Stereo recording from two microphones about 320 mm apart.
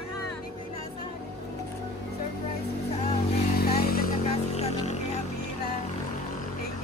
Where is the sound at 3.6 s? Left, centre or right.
Left.